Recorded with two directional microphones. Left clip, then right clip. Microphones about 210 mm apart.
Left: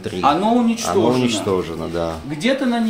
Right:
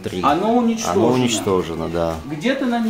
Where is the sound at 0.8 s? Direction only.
10° right (ahead or behind).